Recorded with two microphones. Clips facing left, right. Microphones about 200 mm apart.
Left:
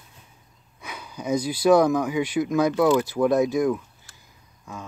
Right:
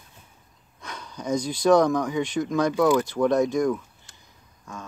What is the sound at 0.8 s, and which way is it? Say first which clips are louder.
Speech: left 1 dB; 10° left (ahead or behind).